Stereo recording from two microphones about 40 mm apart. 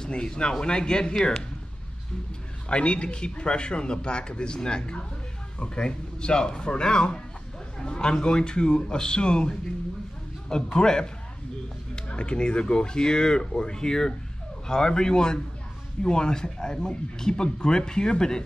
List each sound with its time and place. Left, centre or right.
0.0 s speech: left
2.7 s speech: left